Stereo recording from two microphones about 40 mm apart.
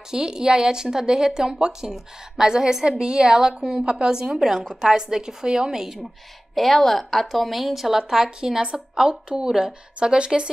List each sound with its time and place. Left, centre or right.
0.1 s a woman's voice: centre
6.5 s a woman's voice: centre; by 10.5 s right